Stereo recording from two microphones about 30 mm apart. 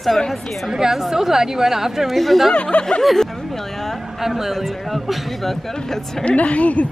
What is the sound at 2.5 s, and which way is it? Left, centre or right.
Speech, left.